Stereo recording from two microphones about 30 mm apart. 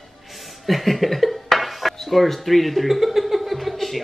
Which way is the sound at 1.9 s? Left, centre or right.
Centre.